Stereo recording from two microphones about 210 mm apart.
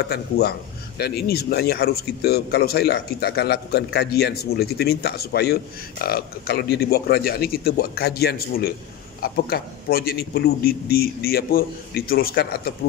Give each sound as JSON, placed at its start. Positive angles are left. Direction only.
{"t": 0.1, "sound": "speech", "side_deg": 50}